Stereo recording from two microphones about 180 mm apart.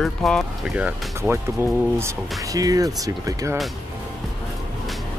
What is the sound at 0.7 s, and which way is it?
Speech, 10° right (ahead or behind).